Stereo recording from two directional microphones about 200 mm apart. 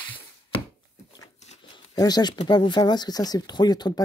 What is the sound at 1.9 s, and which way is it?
Speech, 20° left (ahead or behind).